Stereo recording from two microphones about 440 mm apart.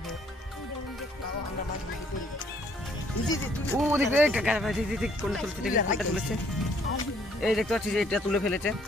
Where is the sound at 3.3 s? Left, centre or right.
Centre.